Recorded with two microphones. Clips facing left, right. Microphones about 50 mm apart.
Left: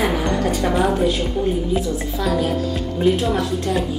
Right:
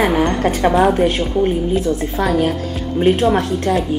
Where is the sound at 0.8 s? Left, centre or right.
Right.